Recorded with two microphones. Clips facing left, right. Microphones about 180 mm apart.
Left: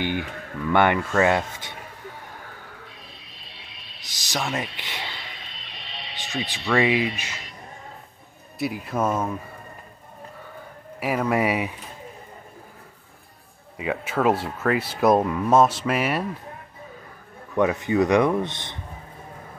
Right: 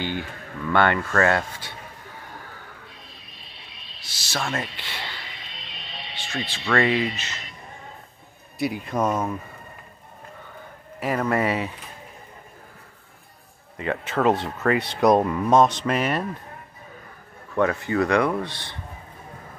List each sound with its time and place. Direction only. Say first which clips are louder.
0.0 s speech: left 2 dB; 15° left (ahead or behind)
4.0 s speech: left 1 dB; 15° left (ahead or behind)
6.1 s music: left 1 dB; 15° left (ahead or behind)
6.8 s speech: left 1 dB; 15° left (ahead or behind)
8.5 s speech: right 1 dB; centre (ahead or behind)
11.0 s speech: left 1 dB; 10° left (ahead or behind)
13.7 s speech: even; 10° left (ahead or behind)
17.6 s speech: left 1 dB; 15° left (ahead or behind)